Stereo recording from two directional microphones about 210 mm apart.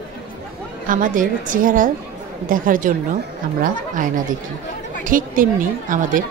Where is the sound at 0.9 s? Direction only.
40° right (ahead or behind).